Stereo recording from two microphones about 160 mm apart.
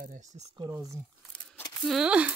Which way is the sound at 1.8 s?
5° right (ahead or behind).